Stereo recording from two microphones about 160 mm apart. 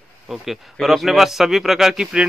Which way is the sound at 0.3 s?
Centre (ahead or behind).